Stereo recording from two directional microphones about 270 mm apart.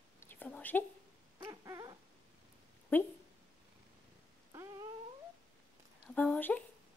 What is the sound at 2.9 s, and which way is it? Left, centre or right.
Speech, centre.